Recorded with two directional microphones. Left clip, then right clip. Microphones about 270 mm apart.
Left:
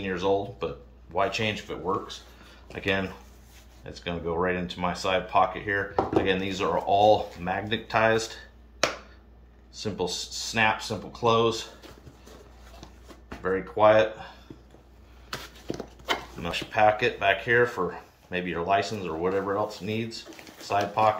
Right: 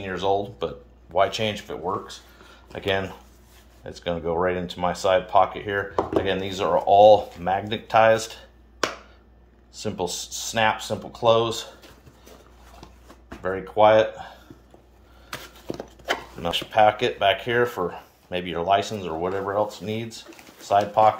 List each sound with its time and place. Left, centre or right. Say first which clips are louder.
0.0 s speech: right 2 dB; right
9.8 s speech: right 2 dB; right
13.4 s speech: right 3 dB; right
15.2 s a sound: right 1 dB; centre
16.4 s speech: right 4 dB; right